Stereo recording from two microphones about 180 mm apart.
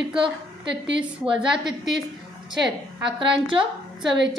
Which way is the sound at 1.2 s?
30° right (ahead or behind).